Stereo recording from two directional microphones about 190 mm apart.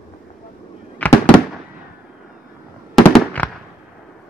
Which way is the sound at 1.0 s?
10° left (ahead or behind).